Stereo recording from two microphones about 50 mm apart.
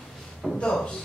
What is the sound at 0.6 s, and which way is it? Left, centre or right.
Speech, centre.